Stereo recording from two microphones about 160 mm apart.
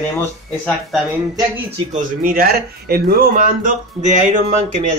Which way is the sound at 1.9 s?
60° right (ahead or behind).